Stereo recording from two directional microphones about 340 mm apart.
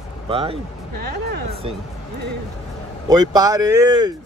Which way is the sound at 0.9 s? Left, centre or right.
Right.